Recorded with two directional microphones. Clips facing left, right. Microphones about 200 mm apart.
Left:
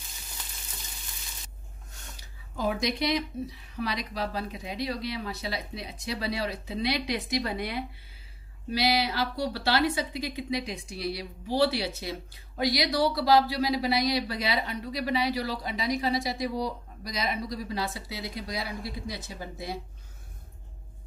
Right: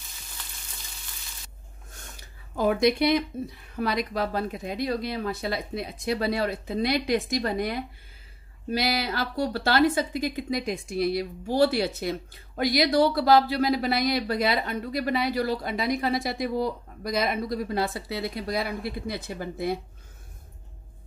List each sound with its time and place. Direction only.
2.5 s speech: 55° right (ahead or behind)